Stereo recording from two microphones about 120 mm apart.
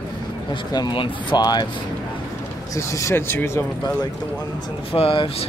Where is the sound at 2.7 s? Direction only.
25° left (ahead or behind).